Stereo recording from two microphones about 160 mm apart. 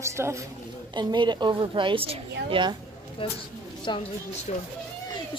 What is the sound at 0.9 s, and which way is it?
A woman's voice, 30° right (ahead or behind).